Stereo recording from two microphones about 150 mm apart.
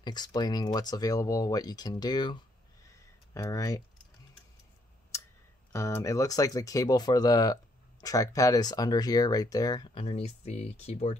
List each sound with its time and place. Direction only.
0.0 s speech: 30° left (ahead or behind)
3.3 s speech: 20° left (ahead or behind)
5.7 s speech: 20° left (ahead or behind)
9.9 s speech: 45° left (ahead or behind)